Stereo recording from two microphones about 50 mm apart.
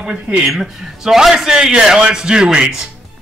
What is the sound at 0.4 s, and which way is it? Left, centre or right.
Speech, centre.